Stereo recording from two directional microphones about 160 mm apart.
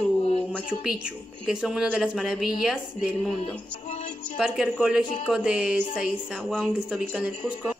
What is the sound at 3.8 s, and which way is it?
Music, 45° left (ahead or behind).